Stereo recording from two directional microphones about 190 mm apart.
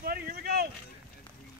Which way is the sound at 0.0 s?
50° right (ahead or behind).